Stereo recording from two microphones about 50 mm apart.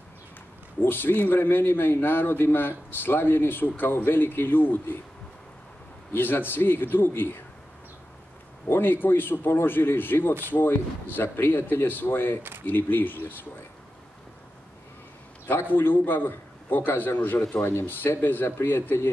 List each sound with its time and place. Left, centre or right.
0.8 s speech: left
6.1 s speech: left
8.6 s speech: left
15.7 s a man's voice: left
18.6 s a man's voice: left